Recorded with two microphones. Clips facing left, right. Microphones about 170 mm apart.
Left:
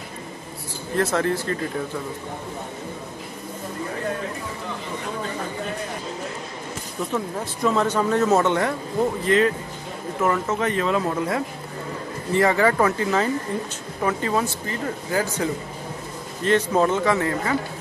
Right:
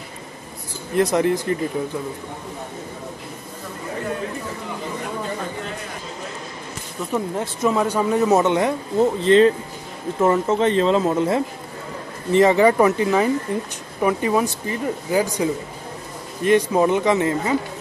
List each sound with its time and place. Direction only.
0.9 s speech: 15° right (ahead or behind)
7.0 s speech: centre (ahead or behind)
7.3 s speech: 15° right (ahead or behind)
9.2 s speech: 30° right (ahead or behind)